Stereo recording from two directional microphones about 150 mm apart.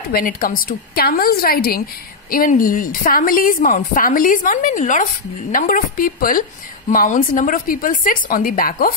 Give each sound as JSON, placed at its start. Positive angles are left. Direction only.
{"t": 0.1, "sound": "a woman's voice", "side_deg": 70}
{"t": 2.3, "sound": "a woman's voice", "side_deg": 65}